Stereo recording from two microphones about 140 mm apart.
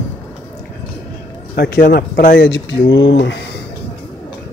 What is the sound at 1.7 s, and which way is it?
Speech, 90° left.